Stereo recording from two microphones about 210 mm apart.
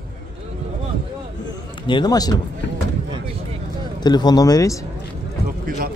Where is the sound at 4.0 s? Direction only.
20° left (ahead or behind).